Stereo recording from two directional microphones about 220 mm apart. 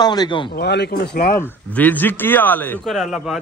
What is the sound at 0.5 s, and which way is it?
Speech, 50° left (ahead or behind).